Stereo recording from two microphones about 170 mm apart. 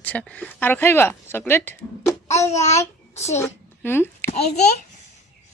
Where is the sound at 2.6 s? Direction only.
40° left (ahead or behind).